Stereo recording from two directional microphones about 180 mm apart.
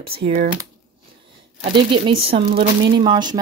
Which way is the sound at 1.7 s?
25° right (ahead or behind).